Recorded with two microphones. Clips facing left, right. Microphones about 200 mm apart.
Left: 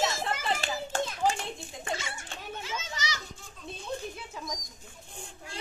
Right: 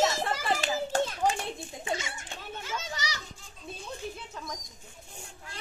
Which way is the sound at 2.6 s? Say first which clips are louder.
Right 2 dB; 40° right (ahead or behind).